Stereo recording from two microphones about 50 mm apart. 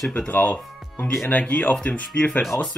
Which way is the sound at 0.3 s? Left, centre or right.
Left.